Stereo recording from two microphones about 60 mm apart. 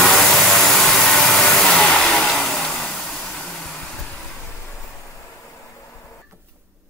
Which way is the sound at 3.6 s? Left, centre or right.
Centre.